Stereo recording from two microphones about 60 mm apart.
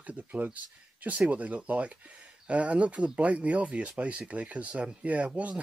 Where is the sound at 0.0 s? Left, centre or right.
Right.